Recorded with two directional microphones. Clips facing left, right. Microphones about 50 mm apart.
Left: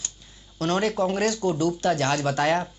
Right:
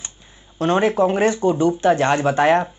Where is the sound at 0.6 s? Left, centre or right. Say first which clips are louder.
Right 7 dB; right.